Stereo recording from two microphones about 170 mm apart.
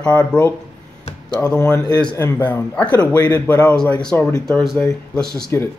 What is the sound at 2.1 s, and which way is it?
Speech, 10° left (ahead or behind).